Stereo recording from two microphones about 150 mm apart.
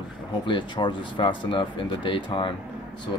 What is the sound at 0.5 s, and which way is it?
Speech, 30° left (ahead or behind).